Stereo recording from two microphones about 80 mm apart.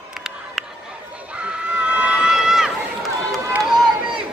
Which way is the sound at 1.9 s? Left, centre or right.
Centre.